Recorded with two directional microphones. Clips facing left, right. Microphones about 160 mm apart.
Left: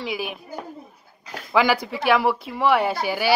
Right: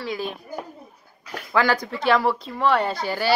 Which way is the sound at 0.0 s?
10° left (ahead or behind).